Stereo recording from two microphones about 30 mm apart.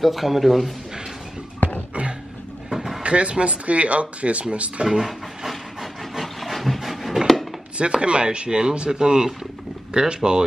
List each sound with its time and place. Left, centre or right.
0.0 s speech: centre
3.0 s speech: right
4.8 s speech: centre
5.5 s steam: centre
6.2 s dog: centre
7.7 s speech: right